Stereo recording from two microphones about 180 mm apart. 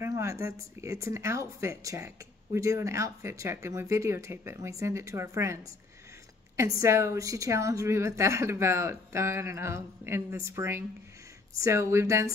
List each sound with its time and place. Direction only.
0.0 s speech: 15° right (ahead or behind)